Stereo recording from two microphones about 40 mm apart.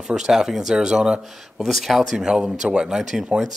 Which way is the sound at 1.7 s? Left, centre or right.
Centre.